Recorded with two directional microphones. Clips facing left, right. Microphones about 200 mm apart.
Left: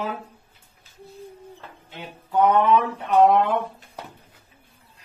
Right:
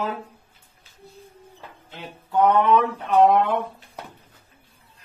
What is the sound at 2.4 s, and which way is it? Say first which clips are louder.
Speech: even; centre (ahead or behind).